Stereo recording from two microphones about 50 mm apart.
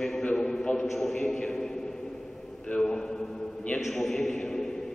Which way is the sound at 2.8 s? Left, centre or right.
Centre.